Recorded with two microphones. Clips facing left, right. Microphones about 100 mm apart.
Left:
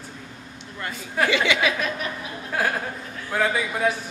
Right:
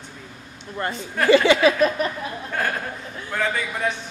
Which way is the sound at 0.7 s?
40° right (ahead or behind).